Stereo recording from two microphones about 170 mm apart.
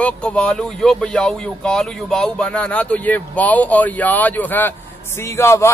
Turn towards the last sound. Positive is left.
turn(degrees=15)  # may be behind; listen again after turning